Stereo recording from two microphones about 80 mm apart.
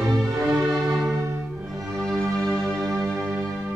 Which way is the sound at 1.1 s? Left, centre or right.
Right.